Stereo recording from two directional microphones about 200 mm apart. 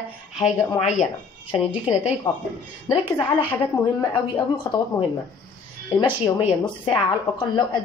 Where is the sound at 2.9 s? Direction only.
25° left (ahead or behind).